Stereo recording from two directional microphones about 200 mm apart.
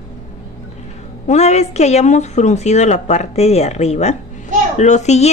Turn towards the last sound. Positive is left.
turn(degrees=35)  # may be behind; listen again after turning